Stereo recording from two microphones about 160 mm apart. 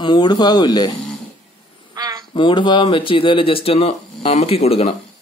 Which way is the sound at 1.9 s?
25° right (ahead or behind).